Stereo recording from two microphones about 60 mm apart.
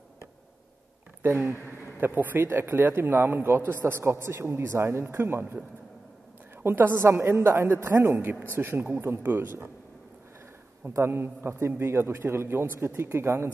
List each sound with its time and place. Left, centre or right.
2.0 s a man's voice: right
6.6 s a man's voice: right
7.9 s a man's voice: right
8.5 s a man's voice: right
11.1 s a man's voice: right